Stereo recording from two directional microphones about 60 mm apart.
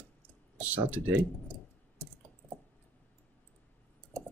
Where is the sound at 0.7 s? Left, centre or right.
Right.